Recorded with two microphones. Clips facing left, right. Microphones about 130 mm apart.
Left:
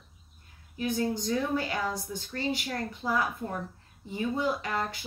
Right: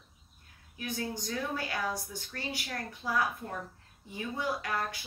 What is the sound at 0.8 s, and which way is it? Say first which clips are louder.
A woman's voice: left 7 dB; 20° left (ahead or behind).